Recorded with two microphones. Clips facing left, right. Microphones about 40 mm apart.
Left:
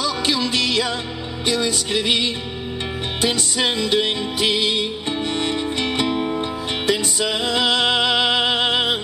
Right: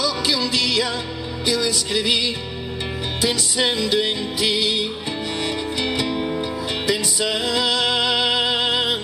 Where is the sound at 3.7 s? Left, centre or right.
Left.